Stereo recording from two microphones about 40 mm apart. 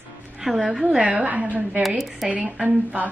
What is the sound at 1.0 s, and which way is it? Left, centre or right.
Speech, right.